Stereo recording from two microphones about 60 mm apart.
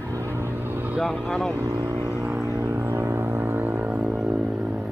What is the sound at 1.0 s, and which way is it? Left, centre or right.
Speech, centre.